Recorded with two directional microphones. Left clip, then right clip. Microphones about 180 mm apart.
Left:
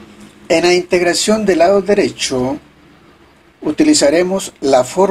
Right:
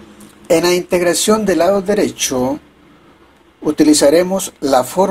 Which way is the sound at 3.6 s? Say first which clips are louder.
Right 1 dB; 25° right (ahead or behind).